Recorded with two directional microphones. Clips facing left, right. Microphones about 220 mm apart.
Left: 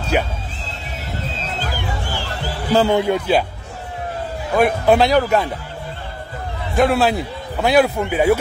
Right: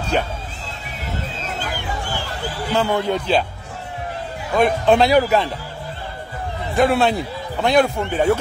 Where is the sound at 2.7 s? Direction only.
30° left (ahead or behind).